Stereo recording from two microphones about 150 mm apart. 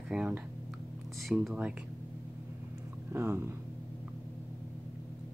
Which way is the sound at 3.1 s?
15° right (ahead or behind).